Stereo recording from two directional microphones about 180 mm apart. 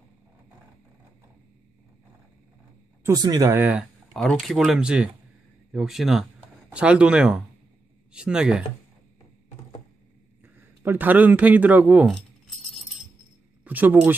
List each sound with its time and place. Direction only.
3.0 s speech: 20° right (ahead or behind)
4.1 s speech: 5° left (ahead or behind)
10.4 s speech: 10° right (ahead or behind)
13.7 s speech: 10° right (ahead or behind)